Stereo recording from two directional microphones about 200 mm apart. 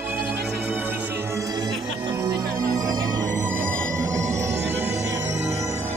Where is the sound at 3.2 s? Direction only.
40° right (ahead or behind).